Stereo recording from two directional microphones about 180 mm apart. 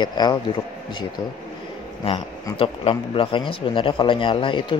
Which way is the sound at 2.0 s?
30° left (ahead or behind).